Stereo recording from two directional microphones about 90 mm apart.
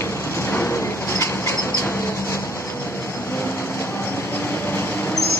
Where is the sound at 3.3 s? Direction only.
25° left (ahead or behind).